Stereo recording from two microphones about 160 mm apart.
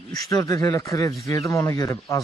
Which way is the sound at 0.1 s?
20° left (ahead or behind).